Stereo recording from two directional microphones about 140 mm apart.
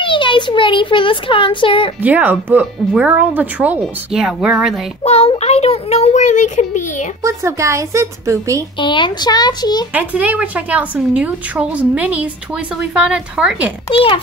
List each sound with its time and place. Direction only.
0.0 s a child's voice: 35° left (ahead or behind)
2.0 s a woman's voice: 10° right (ahead or behind)
5.0 s a child's voice: 45° left (ahead or behind)
7.2 s a woman's voice: 20° right (ahead or behind)
8.7 s a child's voice: 35° left (ahead or behind)
9.9 s a woman's voice: 10° right (ahead or behind)
13.8 s a child's voice: 40° left (ahead or behind)